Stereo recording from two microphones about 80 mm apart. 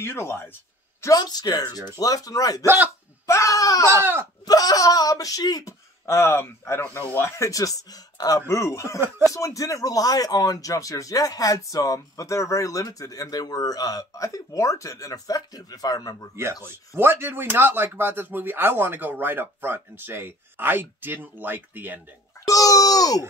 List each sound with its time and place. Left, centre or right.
0.0 s speech: left
1.0 s speech: left
2.6 s speech: right
3.3 s speech: left
3.9 s speech: right
4.5 s speech: left
6.0 s speech: left
8.5 s speech: left
16.9 s speech: right
22.5 s speech: left